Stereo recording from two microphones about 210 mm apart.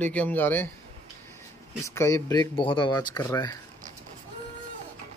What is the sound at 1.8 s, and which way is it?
Speech, 15° left (ahead or behind).